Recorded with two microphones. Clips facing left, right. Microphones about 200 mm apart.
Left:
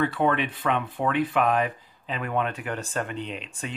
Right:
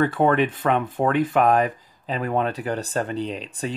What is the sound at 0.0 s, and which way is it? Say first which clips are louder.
Speech: right 5 dB; 45° right (ahead or behind).